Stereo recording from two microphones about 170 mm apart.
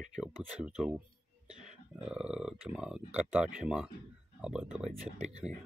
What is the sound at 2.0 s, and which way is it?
Speech, 5° right (ahead or behind).